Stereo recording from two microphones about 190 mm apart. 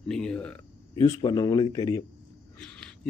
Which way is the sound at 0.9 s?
20° left (ahead or behind).